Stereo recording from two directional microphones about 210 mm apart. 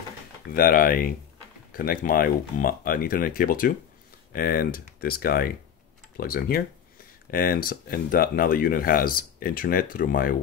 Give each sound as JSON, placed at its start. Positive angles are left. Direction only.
{"t": 0.5, "sound": "speech", "side_deg": 45}